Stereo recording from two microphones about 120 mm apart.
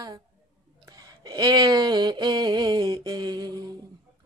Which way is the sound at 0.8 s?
30° right (ahead or behind).